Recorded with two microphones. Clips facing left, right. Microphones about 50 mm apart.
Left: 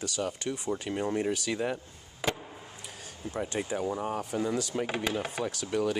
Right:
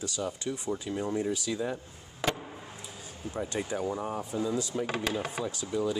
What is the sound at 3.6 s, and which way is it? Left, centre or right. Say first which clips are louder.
Speech: left 1 dB; centre.